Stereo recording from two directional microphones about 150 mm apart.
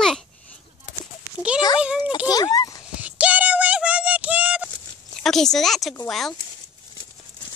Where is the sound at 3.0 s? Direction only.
10° right (ahead or behind).